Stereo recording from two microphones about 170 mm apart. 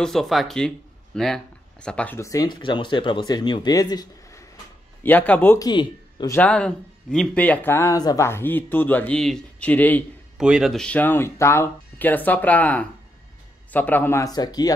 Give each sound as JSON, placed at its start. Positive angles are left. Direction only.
{"t": 0.0, "sound": "speech", "side_deg": 0}
{"t": 5.0, "sound": "speech", "side_deg": 10}
{"t": 5.7, "sound": "a man's voice", "side_deg": 25}
{"t": 6.3, "sound": "speech", "side_deg": 5}
{"t": 10.3, "sound": "speech", "side_deg": -5}